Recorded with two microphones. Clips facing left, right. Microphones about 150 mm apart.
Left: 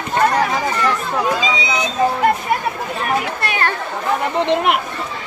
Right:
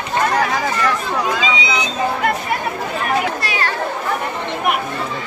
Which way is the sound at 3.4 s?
55° left (ahead or behind).